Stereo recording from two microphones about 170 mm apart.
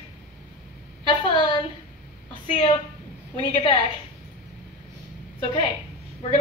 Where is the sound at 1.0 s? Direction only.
25° left (ahead or behind).